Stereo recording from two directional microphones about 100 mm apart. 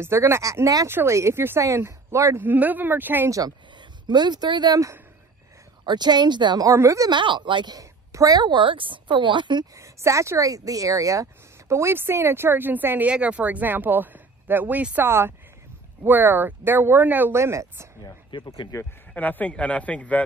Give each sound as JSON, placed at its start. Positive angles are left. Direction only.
{"t": 0.0, "sound": "speech", "side_deg": -25}
{"t": 2.4, "sound": "speech", "side_deg": -15}
{"t": 3.3, "sound": "speech", "side_deg": -35}
{"t": 4.1, "sound": "a woman's voice", "side_deg": -45}
{"t": 5.9, "sound": "a woman's voice", "side_deg": -45}
{"t": 6.7, "sound": "speech", "side_deg": -30}
{"t": 7.1, "sound": "a woman's voice", "side_deg": -50}
{"t": 8.1, "sound": "a woman's voice", "side_deg": -35}
{"t": 9.8, "sound": "speech", "side_deg": -30}
{"t": 18.0, "sound": "speech", "side_deg": 45}
{"t": 18.7, "sound": "speech", "side_deg": 30}
{"t": 19.1, "sound": "a man's voice", "side_deg": 15}